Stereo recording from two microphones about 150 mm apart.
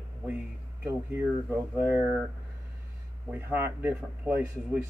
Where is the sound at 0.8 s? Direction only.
15° right (ahead or behind).